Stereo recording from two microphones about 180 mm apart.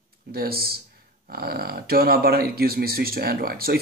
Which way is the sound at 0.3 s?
60° right (ahead or behind).